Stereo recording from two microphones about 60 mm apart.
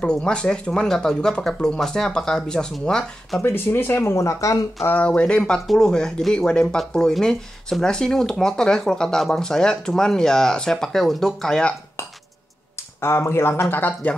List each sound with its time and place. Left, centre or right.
0.0 s speech: centre
3.5 s speech: left
4.9 s speech: left
13.0 s speech: left